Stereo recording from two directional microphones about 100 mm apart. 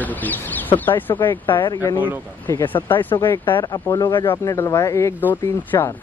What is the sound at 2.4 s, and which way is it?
Speech, 25° left (ahead or behind).